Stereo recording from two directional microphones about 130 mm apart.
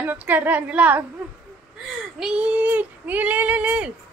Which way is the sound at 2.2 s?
10° right (ahead or behind).